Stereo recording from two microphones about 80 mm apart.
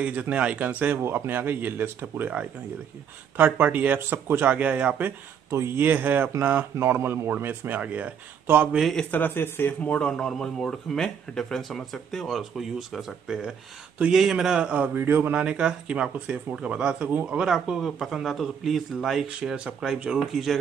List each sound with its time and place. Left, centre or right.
0.0 s speech: centre
5.5 s speech: right
5.9 s speech: right
9.1 s speech: left; by 15.3 s right
15.3 s speech: centre